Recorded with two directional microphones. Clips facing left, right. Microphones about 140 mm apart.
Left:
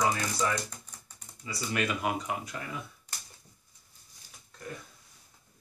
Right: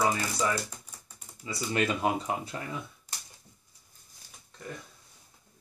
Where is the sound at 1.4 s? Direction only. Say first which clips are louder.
Right 3 dB; 25° right (ahead or behind).